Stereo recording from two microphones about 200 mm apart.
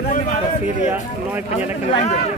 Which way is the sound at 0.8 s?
10° right (ahead or behind).